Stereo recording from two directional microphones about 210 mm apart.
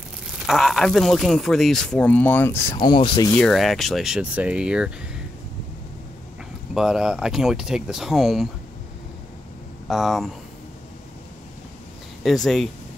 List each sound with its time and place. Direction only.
0.5 s speech: centre (ahead or behind)
2.7 s speech: 20° left (ahead or behind)
3.3 s speech: centre (ahead or behind)
6.7 s speech: centre (ahead or behind)
9.8 s speech: centre (ahead or behind)
12.2 s speech: centre (ahead or behind)